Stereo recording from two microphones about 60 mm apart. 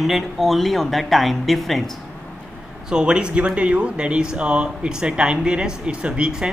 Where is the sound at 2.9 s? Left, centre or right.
Centre.